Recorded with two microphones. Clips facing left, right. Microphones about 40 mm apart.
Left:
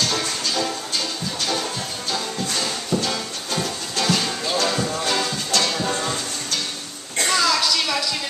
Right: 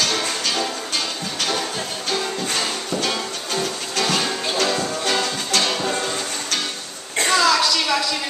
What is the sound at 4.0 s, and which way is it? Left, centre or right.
Music, right.